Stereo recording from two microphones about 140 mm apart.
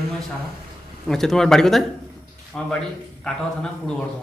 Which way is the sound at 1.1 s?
5° left (ahead or behind).